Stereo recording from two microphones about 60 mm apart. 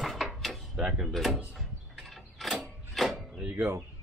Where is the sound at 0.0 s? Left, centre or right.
Centre.